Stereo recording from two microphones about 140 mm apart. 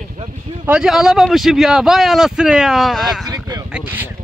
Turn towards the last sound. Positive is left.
turn(degrees=-15)  # may be behind; listen again after turning